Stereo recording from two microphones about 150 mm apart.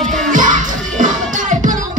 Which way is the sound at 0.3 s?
60° right (ahead or behind).